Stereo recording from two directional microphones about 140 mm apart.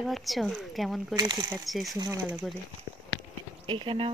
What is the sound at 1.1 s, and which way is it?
Speech, 30° right (ahead or behind).